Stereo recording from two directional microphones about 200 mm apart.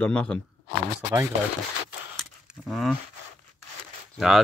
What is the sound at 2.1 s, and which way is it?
Keys jangling, centre (ahead or behind).